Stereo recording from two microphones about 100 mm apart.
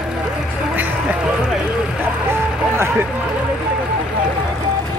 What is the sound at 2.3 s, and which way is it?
Speech, 25° right (ahead or behind).